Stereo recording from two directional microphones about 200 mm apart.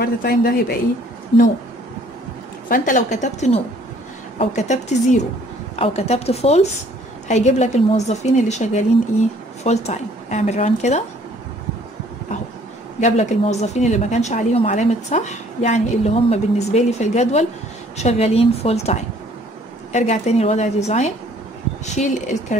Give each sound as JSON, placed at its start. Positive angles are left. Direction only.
{"t": 0.0, "sound": "speech", "side_deg": 50}
{"t": 2.7, "sound": "a woman's voice", "side_deg": 40}
{"t": 13.0, "sound": "a woman's voice", "side_deg": 35}